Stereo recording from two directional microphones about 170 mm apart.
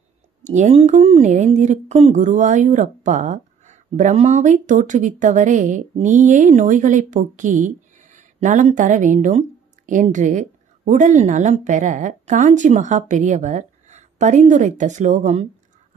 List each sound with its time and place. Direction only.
0.4 s speech: 45° right (ahead or behind)